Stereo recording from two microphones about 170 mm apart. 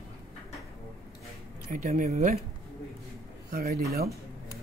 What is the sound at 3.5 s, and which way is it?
Speech, 65° right (ahead or behind).